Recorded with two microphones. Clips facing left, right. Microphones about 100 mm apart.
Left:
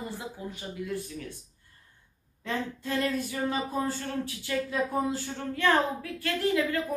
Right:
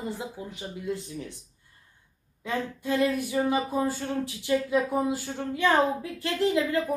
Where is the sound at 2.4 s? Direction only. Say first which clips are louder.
Right 2 dB; 15° right (ahead or behind).